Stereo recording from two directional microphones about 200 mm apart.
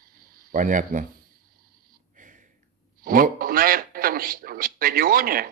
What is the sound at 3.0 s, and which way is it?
Speech, 45° right (ahead or behind).